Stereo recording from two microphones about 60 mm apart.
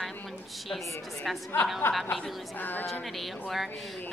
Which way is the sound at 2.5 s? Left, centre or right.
Left.